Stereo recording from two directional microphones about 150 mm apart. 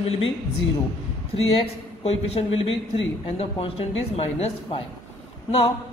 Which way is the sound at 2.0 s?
40° left (ahead or behind).